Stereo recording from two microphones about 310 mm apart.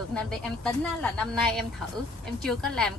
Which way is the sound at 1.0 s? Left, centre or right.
Centre.